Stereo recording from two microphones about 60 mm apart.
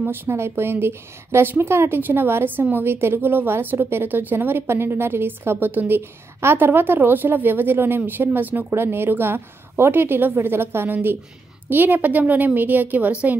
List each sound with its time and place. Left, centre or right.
0.0 s a woman's voice: right